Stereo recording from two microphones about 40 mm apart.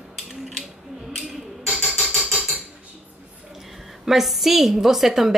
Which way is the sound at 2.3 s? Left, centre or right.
Centre.